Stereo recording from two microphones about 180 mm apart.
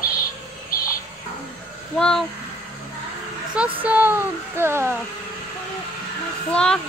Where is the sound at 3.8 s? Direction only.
10° right (ahead or behind).